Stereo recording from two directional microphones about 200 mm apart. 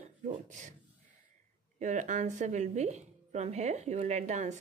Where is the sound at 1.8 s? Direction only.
40° right (ahead or behind).